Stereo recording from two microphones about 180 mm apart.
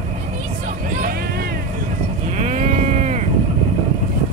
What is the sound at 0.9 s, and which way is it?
Vehicle, 55° right (ahead or behind).